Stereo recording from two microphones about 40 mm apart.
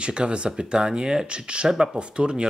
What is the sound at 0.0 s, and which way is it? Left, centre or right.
Speech, right.